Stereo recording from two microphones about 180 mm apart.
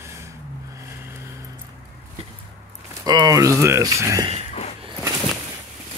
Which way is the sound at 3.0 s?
20° right (ahead or behind).